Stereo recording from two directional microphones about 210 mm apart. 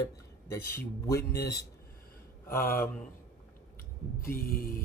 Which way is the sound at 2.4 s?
15° left (ahead or behind).